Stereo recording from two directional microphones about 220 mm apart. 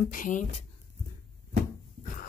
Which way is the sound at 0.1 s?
35° left (ahead or behind).